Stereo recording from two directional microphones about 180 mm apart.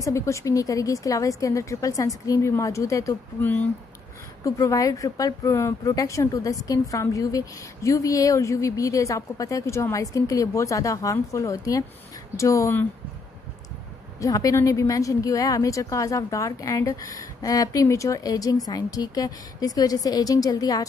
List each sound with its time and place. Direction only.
0.0 s a woman's voice: 15° left (ahead or behind)
14.2 s a woman's voice: 20° left (ahead or behind)